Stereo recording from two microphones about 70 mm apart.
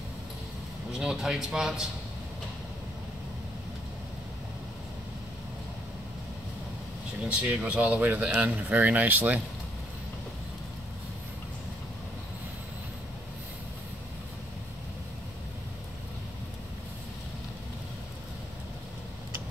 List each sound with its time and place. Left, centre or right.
0.9 s a man's voice: centre
7.2 s speech: centre